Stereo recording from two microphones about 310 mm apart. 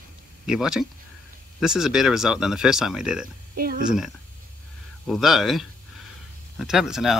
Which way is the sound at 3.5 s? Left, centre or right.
Right.